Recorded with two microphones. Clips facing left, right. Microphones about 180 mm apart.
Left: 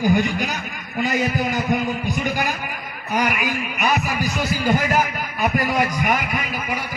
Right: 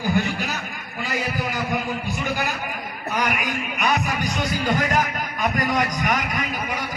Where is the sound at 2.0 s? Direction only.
15° left (ahead or behind).